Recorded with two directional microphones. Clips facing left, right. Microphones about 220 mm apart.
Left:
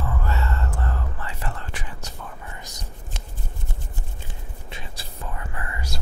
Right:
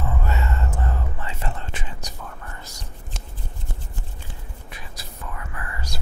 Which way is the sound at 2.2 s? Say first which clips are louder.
Even; 10° left (ahead or behind).